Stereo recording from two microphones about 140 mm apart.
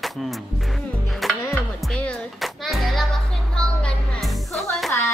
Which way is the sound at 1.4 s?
10° left (ahead or behind).